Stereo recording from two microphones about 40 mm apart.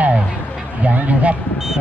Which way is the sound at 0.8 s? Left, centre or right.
Right.